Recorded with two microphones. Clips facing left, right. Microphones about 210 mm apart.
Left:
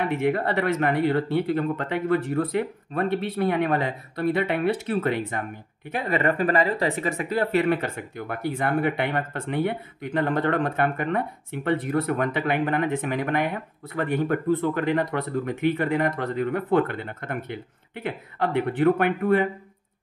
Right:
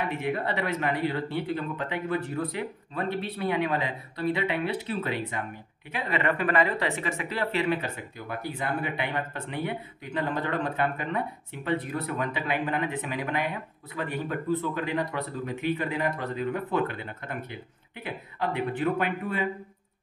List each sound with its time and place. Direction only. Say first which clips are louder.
0.2 s speech: left 6 dB; 50° left (ahead or behind)